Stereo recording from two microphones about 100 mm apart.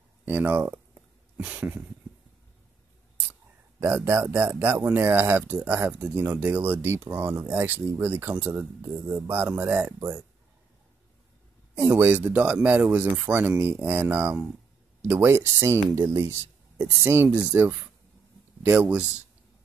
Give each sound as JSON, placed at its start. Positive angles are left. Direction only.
{"t": 0.2, "sound": "speech", "side_deg": -20}
{"t": 1.3, "sound": "a sound", "side_deg": -15}
{"t": 3.8, "sound": "speech", "side_deg": -30}
{"t": 11.7, "sound": "speech", "side_deg": -15}
{"t": 16.7, "sound": "speech", "side_deg": -15}